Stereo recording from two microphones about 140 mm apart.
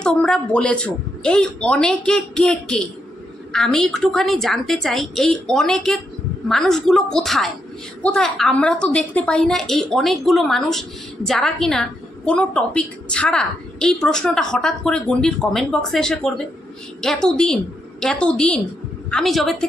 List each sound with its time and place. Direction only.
0.0 s a woman's voice: 5° left (ahead or behind)